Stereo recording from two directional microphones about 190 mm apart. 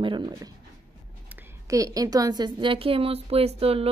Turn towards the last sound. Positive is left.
turn(degrees=-30)  # may be behind; listen again after turning